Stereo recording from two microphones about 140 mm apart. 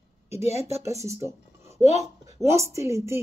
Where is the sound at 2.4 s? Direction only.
20° right (ahead or behind).